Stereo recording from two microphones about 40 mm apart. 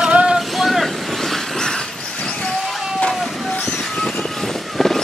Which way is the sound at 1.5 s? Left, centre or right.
Centre.